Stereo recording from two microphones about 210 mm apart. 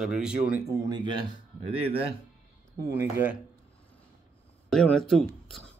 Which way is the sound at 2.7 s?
15° right (ahead or behind).